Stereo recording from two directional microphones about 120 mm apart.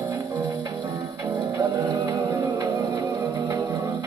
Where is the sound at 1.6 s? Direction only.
25° right (ahead or behind).